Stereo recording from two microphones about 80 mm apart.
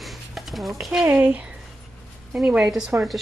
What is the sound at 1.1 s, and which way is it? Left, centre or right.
Speech, centre.